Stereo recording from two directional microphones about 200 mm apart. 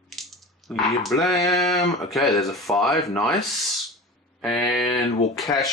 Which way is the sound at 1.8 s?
Centre (ahead or behind).